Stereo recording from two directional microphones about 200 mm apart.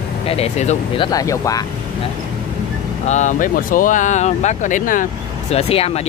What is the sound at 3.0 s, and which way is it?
Speech, 35° left (ahead or behind).